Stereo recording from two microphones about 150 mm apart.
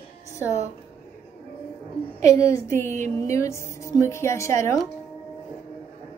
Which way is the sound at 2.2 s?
20° left (ahead or behind).